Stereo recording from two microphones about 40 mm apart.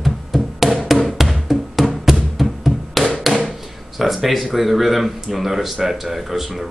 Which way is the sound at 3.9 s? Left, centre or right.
Centre.